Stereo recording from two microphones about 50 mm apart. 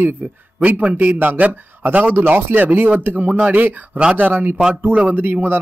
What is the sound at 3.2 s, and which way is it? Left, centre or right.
Speech, right.